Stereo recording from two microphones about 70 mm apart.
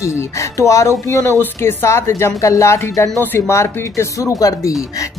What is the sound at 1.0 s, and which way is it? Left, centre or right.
Speech, left.